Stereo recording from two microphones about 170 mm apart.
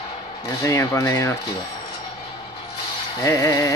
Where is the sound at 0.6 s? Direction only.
20° left (ahead or behind).